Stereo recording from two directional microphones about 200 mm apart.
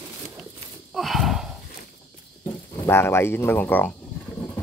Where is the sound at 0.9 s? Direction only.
Centre (ahead or behind).